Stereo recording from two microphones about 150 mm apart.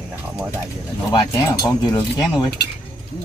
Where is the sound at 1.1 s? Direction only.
25° left (ahead or behind).